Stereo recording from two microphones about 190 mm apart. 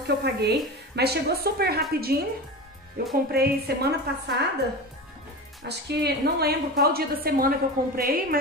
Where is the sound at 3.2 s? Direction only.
55° right (ahead or behind).